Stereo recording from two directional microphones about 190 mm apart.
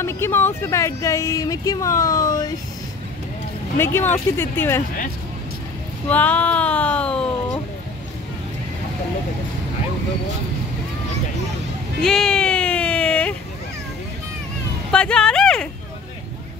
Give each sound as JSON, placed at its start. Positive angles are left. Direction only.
{"t": 0.0, "sound": "speech", "side_deg": 15}
{"t": 3.7, "sound": "speech", "side_deg": 15}
{"t": 6.0, "sound": "speech", "side_deg": 10}
{"t": 12.0, "sound": "a sound", "side_deg": 0}
{"t": 14.9, "sound": "speech", "side_deg": 5}